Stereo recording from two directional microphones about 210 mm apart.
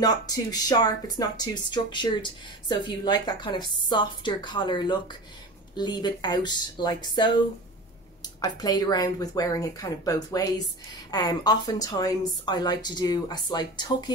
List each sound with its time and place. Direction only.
0.0 s speech: 20° left (ahead or behind)